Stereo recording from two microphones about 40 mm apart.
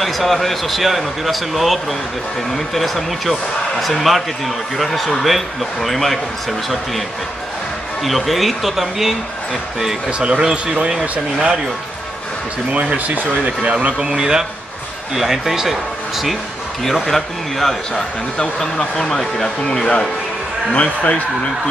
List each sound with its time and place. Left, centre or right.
0.0 s speech: centre
8.0 s speech: centre
10.0 s speech: right
13.1 s speech: right
13.5 s speech: right; by 18.0 s centre
18.4 s speech: left
19.0 s speech: centre
20.7 s speech: left